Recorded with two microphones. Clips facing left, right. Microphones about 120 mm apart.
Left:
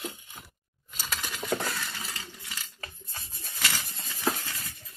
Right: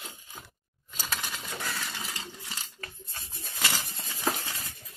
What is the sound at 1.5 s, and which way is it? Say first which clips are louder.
Coin: left 11 dB; 50° left (ahead or behind).